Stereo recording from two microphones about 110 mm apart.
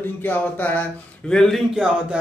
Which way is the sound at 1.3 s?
5° left (ahead or behind).